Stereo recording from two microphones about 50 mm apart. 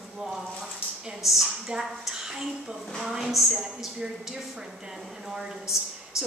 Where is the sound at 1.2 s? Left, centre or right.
Centre.